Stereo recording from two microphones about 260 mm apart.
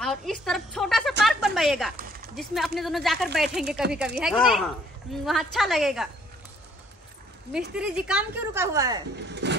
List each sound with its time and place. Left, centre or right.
0.0 s a woman's voice: centre
1.2 s a sound: centre
2.3 s speech: centre
7.7 s speech: centre
9.3 s vehicle: right